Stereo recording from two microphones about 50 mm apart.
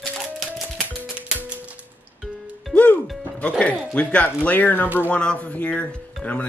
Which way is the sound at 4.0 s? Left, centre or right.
Left.